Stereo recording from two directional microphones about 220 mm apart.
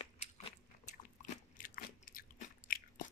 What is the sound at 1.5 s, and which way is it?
Biting, 40° left (ahead or behind).